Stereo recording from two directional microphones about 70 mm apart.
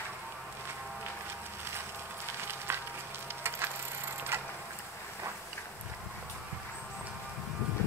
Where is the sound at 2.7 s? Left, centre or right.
Right.